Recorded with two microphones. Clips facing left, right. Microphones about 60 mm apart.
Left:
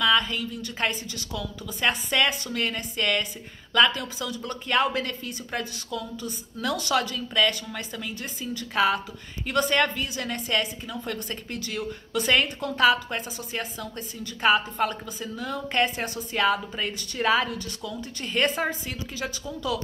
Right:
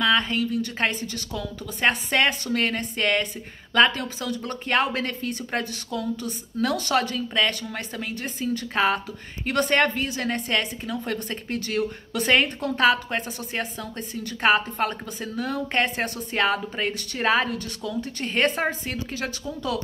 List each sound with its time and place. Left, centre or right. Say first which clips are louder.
0.0 s a woman's voice: right 1 dB; right